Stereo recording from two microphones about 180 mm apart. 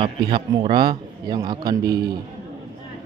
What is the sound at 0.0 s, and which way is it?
A man's voice, 30° right (ahead or behind).